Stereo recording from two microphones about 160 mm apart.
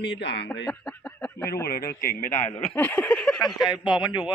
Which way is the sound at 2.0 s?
65° left (ahead or behind).